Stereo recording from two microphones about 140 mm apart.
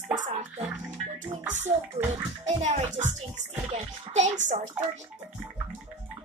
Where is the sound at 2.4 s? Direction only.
50° right (ahead or behind).